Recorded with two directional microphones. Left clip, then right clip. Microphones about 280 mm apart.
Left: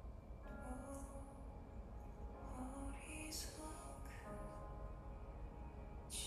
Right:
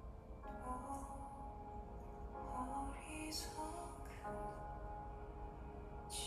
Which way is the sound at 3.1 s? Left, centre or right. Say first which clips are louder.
Right 4 dB; right.